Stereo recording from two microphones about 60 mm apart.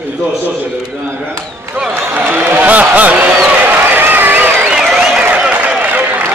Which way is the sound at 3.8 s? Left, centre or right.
Right.